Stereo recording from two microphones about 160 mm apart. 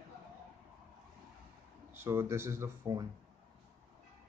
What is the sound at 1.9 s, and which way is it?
Speech, 15° right (ahead or behind).